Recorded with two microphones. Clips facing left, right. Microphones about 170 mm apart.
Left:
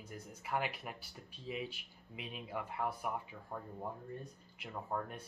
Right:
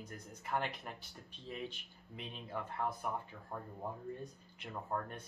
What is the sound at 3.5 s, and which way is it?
Speech, 5° right (ahead or behind).